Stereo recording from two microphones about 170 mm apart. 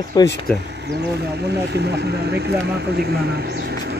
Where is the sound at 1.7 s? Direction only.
75° right (ahead or behind).